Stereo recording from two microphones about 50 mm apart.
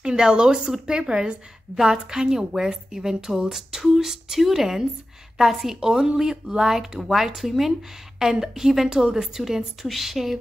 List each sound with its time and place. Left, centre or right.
0.0 s a woman's voice: centre